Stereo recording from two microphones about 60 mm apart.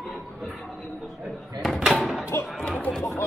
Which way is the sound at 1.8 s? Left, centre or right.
Centre.